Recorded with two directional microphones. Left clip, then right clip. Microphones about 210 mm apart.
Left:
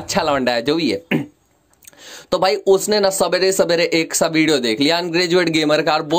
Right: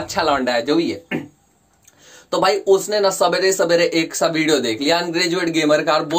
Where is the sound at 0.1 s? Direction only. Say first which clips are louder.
Left 1 dB; 40° left (ahead or behind).